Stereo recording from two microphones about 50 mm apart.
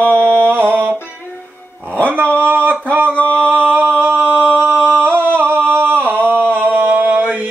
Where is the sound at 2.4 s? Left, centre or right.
Right.